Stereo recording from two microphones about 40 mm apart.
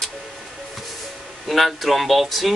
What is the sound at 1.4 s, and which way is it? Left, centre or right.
Speech, centre.